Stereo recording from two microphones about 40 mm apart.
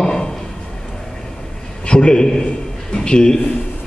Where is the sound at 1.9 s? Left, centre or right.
Centre.